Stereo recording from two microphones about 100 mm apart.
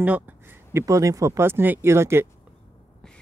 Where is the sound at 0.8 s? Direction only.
35° right (ahead or behind).